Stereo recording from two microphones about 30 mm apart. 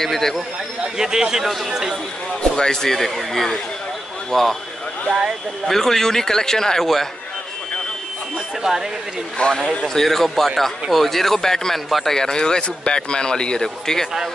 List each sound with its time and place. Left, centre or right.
0.0 s speech: centre
0.9 s a man's voice: right
2.5 s speech: left
4.3 s speech: centre
5.7 s speech: centre
8.6 s speech: centre
9.4 s speech: left
9.9 s a man's voice: centre